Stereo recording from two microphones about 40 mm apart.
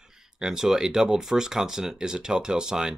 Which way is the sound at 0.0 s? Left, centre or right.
Centre.